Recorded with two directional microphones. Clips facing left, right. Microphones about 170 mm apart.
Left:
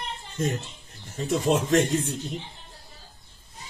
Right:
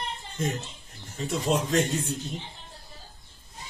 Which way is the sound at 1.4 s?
50° left (ahead or behind).